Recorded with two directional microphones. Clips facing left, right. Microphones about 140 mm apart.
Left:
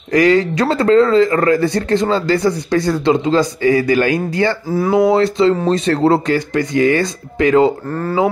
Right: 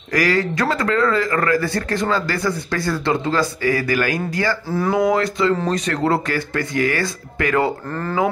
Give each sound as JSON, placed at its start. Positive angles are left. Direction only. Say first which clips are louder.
{"t": 0.1, "sound": "speech", "louder": "left 7 dB", "side_deg": 20}
{"t": 4.6, "sound": "speech", "louder": "left 5 dB", "side_deg": 10}
{"t": 5.0, "sound": "speech", "louder": "left 7 dB", "side_deg": 25}
{"t": 7.9, "sound": "speech", "louder": "left 5 dB", "side_deg": 10}